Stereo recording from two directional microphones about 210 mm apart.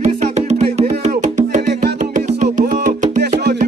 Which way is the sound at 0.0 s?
30° right (ahead or behind).